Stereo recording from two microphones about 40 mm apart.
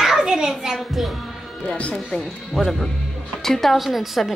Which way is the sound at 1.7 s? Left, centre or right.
Left.